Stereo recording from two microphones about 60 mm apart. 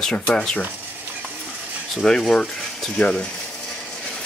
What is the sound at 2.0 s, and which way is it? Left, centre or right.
Speech, centre.